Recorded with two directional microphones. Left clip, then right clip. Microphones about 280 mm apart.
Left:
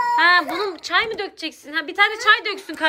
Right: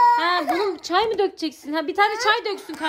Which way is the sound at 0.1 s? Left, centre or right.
Centre.